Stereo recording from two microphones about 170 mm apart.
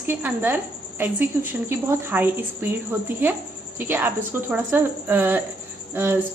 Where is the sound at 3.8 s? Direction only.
10° right (ahead or behind).